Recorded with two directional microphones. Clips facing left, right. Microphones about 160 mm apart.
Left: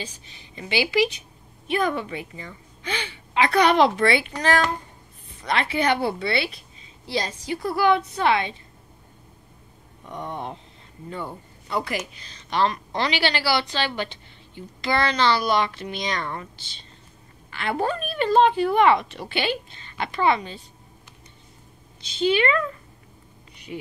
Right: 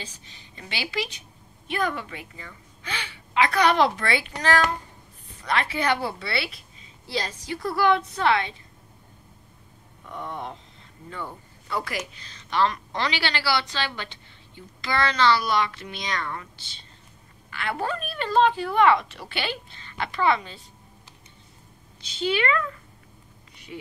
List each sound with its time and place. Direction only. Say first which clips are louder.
0.6 s a woman's voice: left 9 dB; 10° left (ahead or behind)
10.0 s a sound: left 2 dB; 15° left (ahead or behind)
11.1 s a woman's voice: left 3 dB; 20° left (ahead or behind)
15.0 s a woman's voice: right 1 dB; 20° left (ahead or behind)
17.5 s a woman's voice: left 4 dB; 25° left (ahead or behind)
22.2 s a woman's voice: left 4 dB; 20° left (ahead or behind)
23.7 s speech: left 4 dB; 25° left (ahead or behind)